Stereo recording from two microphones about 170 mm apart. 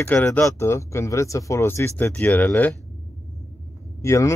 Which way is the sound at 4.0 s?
15° left (ahead or behind).